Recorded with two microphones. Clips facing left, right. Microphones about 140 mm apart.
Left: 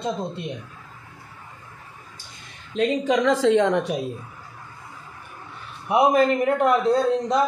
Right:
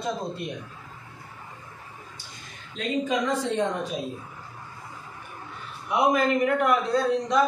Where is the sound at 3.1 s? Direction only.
90° left.